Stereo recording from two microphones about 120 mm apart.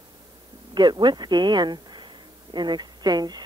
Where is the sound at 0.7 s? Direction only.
40° right (ahead or behind).